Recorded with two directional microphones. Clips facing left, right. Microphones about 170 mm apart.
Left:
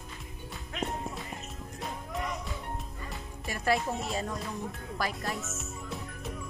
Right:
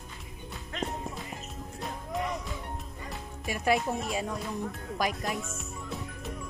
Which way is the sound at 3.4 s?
15° right (ahead or behind).